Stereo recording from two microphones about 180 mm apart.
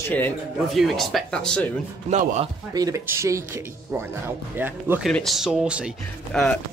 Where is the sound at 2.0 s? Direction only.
40° right (ahead or behind).